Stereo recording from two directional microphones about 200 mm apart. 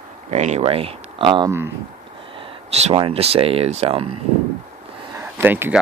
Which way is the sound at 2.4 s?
35° right (ahead or behind).